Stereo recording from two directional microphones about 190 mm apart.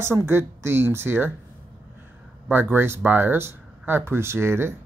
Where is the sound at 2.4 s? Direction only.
10° right (ahead or behind).